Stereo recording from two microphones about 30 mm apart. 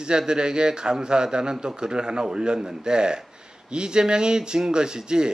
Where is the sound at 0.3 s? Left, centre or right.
Right.